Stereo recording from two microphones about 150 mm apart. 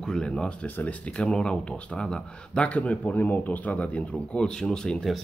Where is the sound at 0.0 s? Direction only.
5° left (ahead or behind).